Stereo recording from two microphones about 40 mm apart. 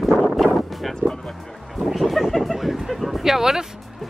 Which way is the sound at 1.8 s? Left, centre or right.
Centre.